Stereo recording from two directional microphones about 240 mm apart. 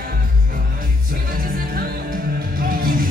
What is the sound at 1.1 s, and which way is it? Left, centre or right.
Music, right.